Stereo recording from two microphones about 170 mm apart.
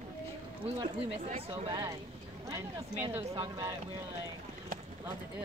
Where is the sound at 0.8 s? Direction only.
35° right (ahead or behind).